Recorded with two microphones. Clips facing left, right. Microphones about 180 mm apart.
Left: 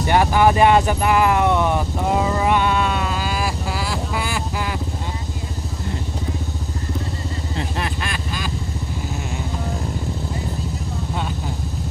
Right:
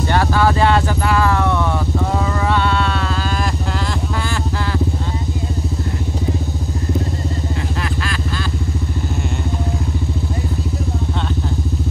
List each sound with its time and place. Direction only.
0.1 s vehicle: 15° left (ahead or behind)